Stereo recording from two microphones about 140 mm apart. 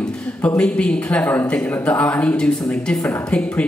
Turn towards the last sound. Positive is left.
turn(degrees=10)  # may be behind; listen again after turning